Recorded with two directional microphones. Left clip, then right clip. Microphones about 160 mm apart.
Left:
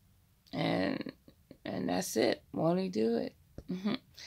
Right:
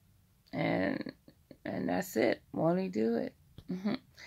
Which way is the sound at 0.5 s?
5° left (ahead or behind).